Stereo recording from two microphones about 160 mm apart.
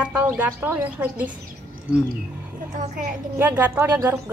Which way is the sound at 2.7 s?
55° right (ahead or behind).